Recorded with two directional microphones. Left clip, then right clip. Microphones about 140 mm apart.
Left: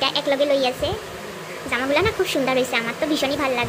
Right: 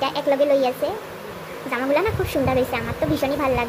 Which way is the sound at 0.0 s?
10° right (ahead or behind).